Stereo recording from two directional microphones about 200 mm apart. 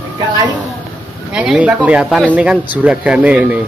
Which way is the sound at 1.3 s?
5° right (ahead or behind).